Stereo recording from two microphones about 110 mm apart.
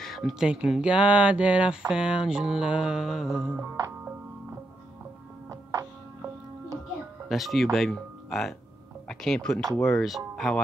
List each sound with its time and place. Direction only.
0.0 s speech: centre (ahead or behind)
5.5 s music: 30° right (ahead or behind)
7.2 s speech: centre (ahead or behind)